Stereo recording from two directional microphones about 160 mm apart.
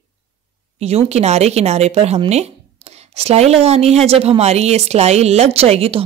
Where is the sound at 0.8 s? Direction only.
40° right (ahead or behind).